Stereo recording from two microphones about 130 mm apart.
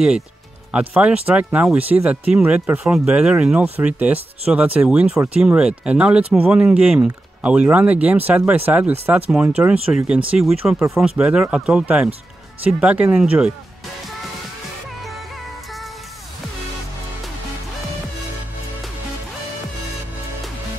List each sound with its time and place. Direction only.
0.7 s speech: 10° right (ahead or behind)
5.4 s speech: 5° right (ahead or behind)
9.9 s speech: 20° right (ahead or behind)
10.3 s speech: 5° right (ahead or behind)